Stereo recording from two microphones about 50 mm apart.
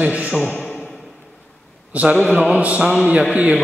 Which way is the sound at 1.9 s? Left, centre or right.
Right.